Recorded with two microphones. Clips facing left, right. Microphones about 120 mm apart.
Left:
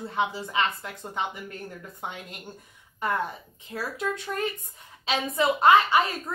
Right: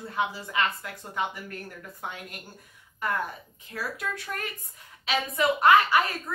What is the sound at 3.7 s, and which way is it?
A woman's voice, 25° left (ahead or behind).